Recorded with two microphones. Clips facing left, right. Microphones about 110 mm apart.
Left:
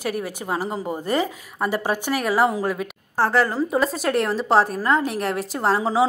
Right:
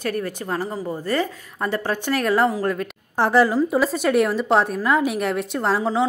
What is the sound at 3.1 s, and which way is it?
Speech, 15° right (ahead or behind).